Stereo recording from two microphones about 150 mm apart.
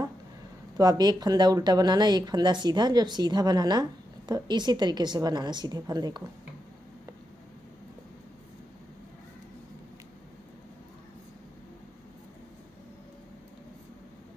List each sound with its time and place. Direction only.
0.7 s speech: 25° right (ahead or behind)